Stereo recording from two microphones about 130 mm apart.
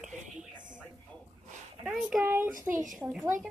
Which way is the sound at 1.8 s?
10° right (ahead or behind).